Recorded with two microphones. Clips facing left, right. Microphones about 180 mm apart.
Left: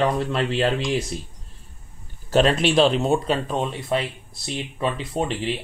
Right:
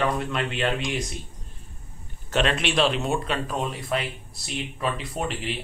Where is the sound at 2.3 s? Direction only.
35° left (ahead or behind).